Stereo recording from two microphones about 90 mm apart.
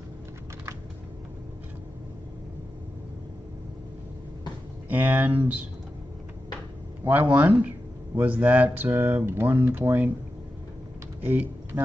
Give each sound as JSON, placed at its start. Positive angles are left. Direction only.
{"t": 4.8, "sound": "speech", "side_deg": -20}
{"t": 7.1, "sound": "speech", "side_deg": -20}
{"t": 11.1, "sound": "speech", "side_deg": -20}